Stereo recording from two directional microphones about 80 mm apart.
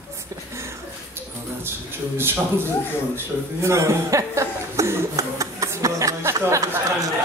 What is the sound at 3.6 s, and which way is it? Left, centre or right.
Chuckle, right.